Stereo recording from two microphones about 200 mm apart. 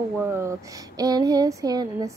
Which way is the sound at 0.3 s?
20° right (ahead or behind).